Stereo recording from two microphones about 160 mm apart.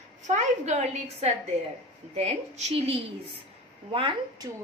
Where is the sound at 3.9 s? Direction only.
30° right (ahead or behind).